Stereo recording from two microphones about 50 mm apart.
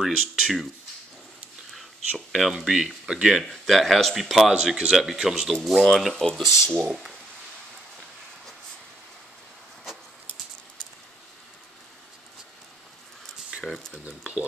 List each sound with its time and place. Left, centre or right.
0.0 s speech: centre
1.7 s a sound: centre
2.6 s speech: centre
3.4 s speech: centre
5.6 s speech: centre
6.1 s speech: centre
6.4 s speech: centre
13.7 s speech: centre
14.0 s speech: right